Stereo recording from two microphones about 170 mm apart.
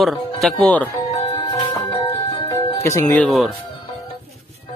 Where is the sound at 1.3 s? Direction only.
25° left (ahead or behind).